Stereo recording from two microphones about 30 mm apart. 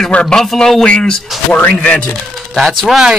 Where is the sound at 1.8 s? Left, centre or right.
Left.